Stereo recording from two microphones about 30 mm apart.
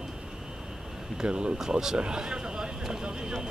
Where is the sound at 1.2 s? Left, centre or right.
Right.